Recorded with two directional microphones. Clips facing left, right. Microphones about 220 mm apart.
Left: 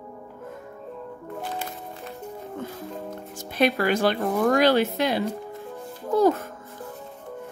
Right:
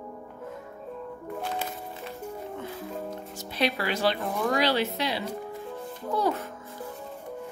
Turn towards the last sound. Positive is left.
turn(degrees=45)  # may be behind; listen again after turning